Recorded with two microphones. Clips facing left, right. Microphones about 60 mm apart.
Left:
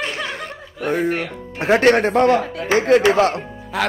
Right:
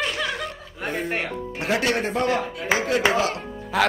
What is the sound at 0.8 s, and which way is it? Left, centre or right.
Speech, left.